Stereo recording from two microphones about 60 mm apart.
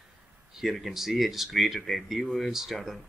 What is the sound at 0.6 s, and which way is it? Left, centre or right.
Speech, centre.